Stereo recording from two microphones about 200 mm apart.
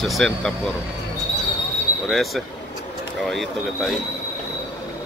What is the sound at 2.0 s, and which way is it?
Speech, centre (ahead or behind).